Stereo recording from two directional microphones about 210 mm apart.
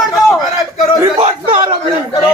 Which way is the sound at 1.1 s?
25° right (ahead or behind).